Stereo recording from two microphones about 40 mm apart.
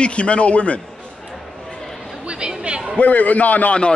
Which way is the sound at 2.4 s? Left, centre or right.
Right.